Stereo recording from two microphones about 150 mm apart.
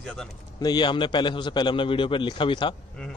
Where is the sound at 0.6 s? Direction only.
30° left (ahead or behind).